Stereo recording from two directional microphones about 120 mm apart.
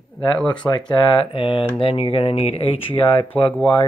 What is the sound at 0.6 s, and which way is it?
Speech, 10° left (ahead or behind).